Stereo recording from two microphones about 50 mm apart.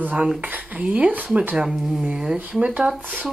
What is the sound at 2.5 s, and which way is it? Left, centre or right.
Speech, right.